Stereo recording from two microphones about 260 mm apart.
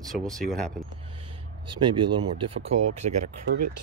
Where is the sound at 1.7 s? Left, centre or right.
Centre.